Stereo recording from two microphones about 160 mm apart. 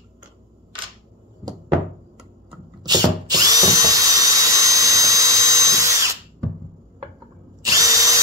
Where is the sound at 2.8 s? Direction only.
25° right (ahead or behind).